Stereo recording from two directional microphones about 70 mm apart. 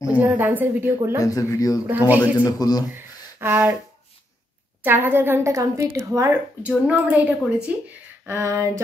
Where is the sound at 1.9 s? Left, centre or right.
Right.